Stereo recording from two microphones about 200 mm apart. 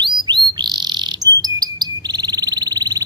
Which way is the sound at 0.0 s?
20° right (ahead or behind).